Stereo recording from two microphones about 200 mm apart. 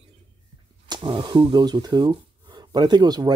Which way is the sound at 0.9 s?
25° right (ahead or behind).